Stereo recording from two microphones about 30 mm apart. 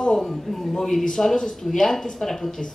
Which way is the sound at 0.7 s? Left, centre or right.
Centre.